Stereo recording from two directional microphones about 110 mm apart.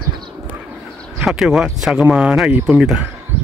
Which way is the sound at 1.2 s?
5° right (ahead or behind).